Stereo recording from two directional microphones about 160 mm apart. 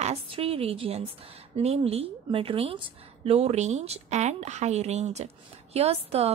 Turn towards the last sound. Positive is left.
turn(degrees=-40)  # may be behind; listen again after turning